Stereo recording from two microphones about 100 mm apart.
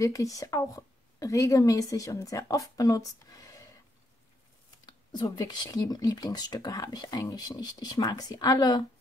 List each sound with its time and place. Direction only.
0.0 s speech: 35° left (ahead or behind)
4.8 s speech: 45° left (ahead or behind)